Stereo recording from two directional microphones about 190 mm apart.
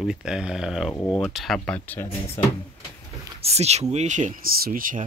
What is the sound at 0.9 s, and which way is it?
Speech, 15° left (ahead or behind).